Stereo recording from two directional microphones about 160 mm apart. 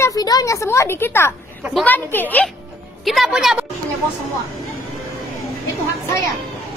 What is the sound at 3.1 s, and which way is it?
Speech, centre (ahead or behind).